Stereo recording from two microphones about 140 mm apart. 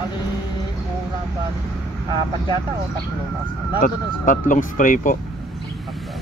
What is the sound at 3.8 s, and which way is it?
Speech, 75° left (ahead or behind).